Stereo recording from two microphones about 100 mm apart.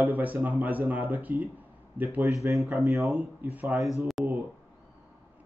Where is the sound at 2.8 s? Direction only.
30° right (ahead or behind).